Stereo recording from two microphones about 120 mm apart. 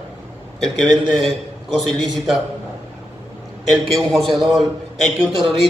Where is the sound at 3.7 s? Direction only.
Centre (ahead or behind).